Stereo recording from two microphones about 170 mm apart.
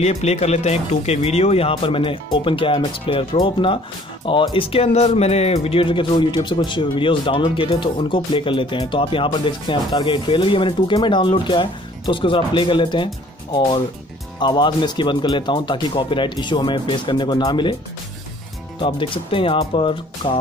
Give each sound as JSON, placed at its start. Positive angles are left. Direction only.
{"t": 0.0, "sound": "speech", "side_deg": 40}
{"t": 18.8, "sound": "speech", "side_deg": 30}